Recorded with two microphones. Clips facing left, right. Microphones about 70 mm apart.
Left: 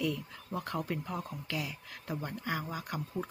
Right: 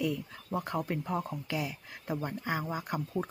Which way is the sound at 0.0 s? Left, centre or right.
Centre.